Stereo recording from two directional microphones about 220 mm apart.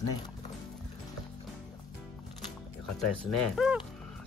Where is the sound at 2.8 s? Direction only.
Centre (ahead or behind).